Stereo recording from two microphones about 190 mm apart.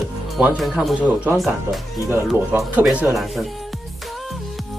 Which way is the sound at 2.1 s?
10° right (ahead or behind).